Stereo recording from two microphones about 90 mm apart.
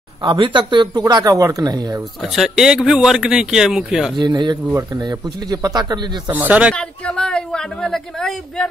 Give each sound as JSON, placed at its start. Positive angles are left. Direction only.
{"t": 0.2, "sound": "speech", "side_deg": -65}
{"t": 2.2, "sound": "speech", "side_deg": 0}
{"t": 4.2, "sound": "speech", "side_deg": -55}
{"t": 4.6, "sound": "speech", "side_deg": -30}
{"t": 5.0, "sound": "speech", "side_deg": -45}
{"t": 6.3, "sound": "speech", "side_deg": -20}
{"t": 6.7, "sound": "speech", "side_deg": 10}